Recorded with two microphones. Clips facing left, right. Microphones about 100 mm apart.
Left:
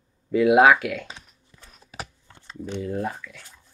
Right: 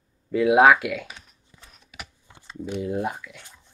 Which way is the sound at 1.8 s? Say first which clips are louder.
Left 5 dB; 35° left (ahead or behind).